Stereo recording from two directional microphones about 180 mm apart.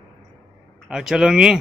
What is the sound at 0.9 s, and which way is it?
Speech, 5° right (ahead or behind).